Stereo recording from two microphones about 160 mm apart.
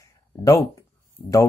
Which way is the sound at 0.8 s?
20° left (ahead or behind).